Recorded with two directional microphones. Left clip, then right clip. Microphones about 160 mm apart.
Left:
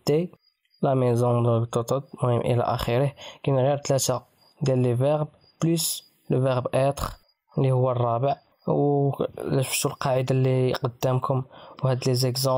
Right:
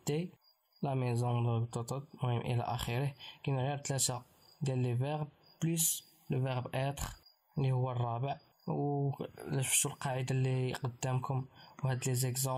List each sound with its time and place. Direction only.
0.0 s speech: 35° left (ahead or behind)